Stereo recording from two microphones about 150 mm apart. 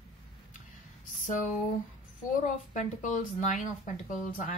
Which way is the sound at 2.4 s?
60° left (ahead or behind).